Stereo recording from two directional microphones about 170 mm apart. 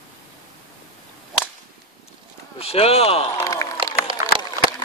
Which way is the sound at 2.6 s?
35° left (ahead or behind).